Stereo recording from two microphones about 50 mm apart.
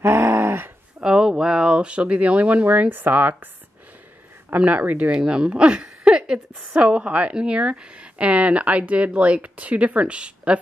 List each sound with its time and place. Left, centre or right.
0.0 s a sound: right
1.0 s speech: centre; by 3.4 s right
4.6 s speech: right
5.1 s a woman's voice: centre